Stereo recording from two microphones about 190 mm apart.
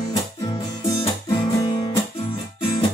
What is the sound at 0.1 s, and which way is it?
Music, 20° left (ahead or behind).